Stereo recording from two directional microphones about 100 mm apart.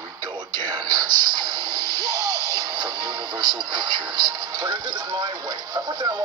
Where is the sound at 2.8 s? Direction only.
40° right (ahead or behind).